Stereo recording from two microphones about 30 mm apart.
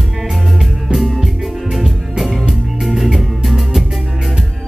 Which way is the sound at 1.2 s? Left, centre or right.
Centre.